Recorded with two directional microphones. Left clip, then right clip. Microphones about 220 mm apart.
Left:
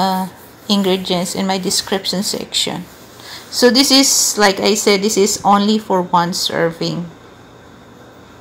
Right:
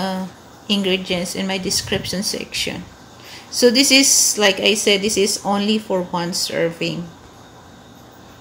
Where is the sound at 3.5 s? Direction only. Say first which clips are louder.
Left 2 dB; 15° left (ahead or behind).